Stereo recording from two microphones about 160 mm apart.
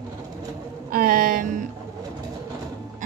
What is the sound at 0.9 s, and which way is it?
Speech, 60° right (ahead or behind).